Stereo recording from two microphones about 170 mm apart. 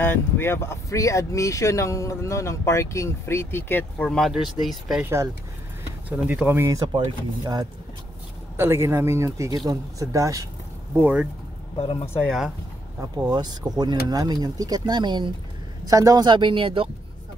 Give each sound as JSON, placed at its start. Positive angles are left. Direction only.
{"t": 0.0, "sound": "speech", "side_deg": 15}
{"t": 5.0, "sound": "speech", "side_deg": -15}
{"t": 8.5, "sound": "speech", "side_deg": -15}
{"t": 11.0, "sound": "speech", "side_deg": -10}
{"t": 11.7, "sound": "speech", "side_deg": 35}
{"t": 12.3, "sound": "speech", "side_deg": 0}
{"t": 13.3, "sound": "speech", "side_deg": -25}